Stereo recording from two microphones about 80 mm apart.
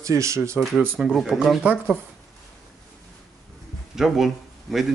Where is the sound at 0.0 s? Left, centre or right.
Right.